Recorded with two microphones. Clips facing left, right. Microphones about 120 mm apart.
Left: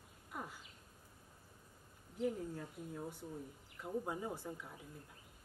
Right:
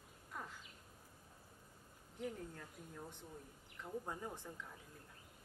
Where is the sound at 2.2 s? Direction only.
10° left (ahead or behind).